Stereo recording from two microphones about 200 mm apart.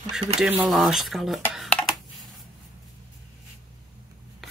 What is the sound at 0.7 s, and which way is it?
Speech, centre (ahead or behind).